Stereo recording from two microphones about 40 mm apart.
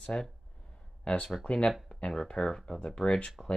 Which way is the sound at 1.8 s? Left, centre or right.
Left.